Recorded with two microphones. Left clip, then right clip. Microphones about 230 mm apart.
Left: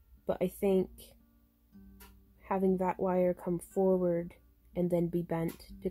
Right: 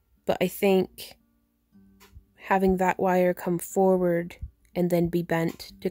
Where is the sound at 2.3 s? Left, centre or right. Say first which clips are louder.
Right 8 dB; right.